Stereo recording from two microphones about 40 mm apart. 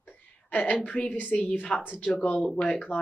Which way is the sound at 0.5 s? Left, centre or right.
Left.